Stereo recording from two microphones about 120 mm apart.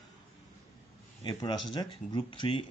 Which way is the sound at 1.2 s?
35° left (ahead or behind).